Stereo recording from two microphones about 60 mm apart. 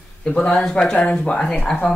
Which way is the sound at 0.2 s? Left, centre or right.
Centre.